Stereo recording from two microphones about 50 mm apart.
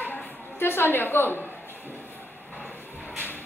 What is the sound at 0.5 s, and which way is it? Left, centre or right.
Speech, left.